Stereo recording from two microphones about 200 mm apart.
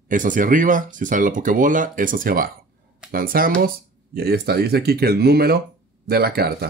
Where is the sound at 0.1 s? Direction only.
40° right (ahead or behind).